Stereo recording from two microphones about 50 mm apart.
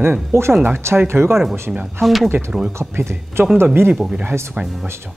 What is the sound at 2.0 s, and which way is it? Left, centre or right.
Speech, centre.